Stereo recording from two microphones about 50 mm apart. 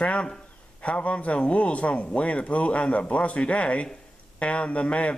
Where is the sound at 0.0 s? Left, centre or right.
Left.